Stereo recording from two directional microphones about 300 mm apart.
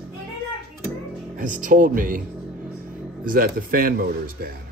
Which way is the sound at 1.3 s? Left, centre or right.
Right.